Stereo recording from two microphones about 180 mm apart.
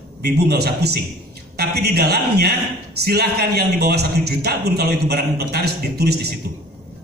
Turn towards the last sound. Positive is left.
turn(degrees=-65)  # may be behind; listen again after turning